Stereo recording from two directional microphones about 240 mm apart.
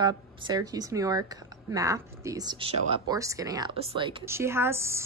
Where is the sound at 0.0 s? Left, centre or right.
Centre.